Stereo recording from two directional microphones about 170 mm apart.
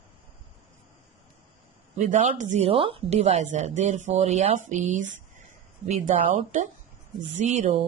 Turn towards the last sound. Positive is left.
turn(degrees=-45)  # may be behind; listen again after turning